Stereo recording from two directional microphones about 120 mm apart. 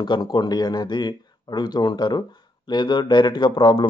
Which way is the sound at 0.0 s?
40° left (ahead or behind).